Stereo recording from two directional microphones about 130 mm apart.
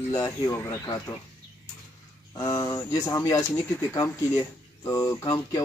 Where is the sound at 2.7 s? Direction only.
25° left (ahead or behind).